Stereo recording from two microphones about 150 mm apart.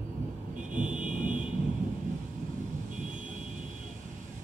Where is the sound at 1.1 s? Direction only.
60° right (ahead or behind).